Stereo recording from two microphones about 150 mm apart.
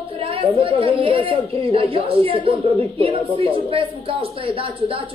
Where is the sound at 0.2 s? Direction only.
40° right (ahead or behind).